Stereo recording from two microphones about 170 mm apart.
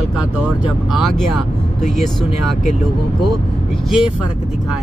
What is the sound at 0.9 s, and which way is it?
Speech, centre (ahead or behind).